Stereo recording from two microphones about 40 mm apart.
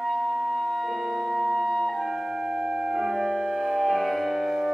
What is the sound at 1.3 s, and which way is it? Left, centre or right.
Music, centre.